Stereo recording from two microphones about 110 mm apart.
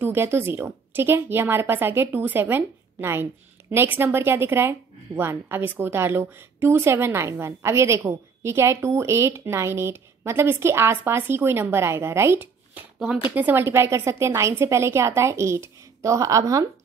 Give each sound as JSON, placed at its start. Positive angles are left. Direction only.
{"t": 0.0, "sound": "a woman's voice", "side_deg": -20}